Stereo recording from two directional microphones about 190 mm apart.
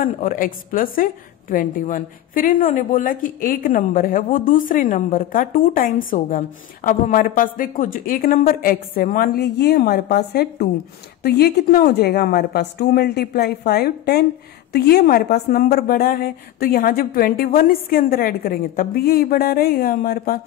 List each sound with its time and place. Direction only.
0.0 s a woman's voice: 45° left (ahead or behind)